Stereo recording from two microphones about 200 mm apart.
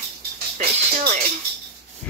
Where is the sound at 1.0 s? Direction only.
40° right (ahead or behind).